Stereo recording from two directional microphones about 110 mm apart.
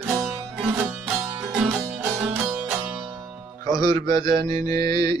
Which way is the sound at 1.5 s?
10° right (ahead or behind).